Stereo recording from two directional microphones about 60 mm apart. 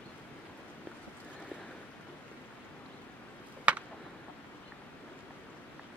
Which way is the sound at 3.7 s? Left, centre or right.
Right.